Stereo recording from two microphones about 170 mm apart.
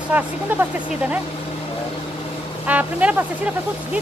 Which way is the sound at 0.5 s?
10° right (ahead or behind).